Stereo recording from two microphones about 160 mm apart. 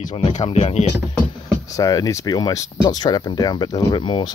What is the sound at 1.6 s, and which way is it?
Speech, 20° left (ahead or behind).